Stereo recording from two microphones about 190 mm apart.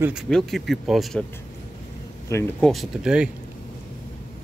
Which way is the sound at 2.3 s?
15° left (ahead or behind).